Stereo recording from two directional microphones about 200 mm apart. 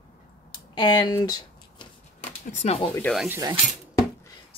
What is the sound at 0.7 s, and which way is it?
Speech, 20° left (ahead or behind).